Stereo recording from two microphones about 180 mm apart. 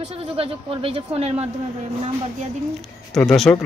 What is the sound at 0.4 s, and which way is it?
Speech, 30° right (ahead or behind).